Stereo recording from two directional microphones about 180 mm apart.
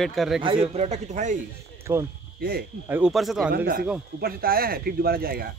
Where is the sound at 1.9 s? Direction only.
15° right (ahead or behind).